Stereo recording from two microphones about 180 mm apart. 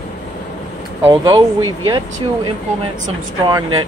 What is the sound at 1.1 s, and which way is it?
Speech, 20° right (ahead or behind).